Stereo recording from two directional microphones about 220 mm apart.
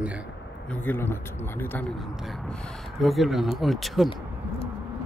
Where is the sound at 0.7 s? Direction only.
10° left (ahead or behind).